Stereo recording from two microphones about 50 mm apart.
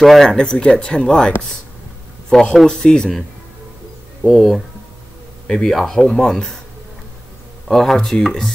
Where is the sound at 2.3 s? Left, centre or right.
Centre.